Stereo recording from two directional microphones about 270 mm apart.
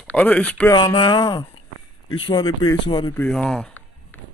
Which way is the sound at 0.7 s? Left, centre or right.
Centre.